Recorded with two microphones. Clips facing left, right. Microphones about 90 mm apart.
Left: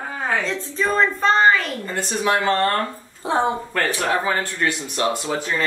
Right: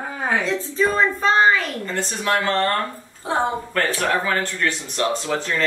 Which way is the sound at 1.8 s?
15° left (ahead or behind).